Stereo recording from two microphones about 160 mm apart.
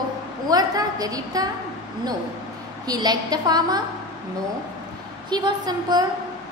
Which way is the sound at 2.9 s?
25° right (ahead or behind).